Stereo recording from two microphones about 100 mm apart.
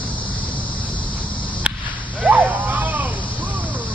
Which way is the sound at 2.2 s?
15° right (ahead or behind).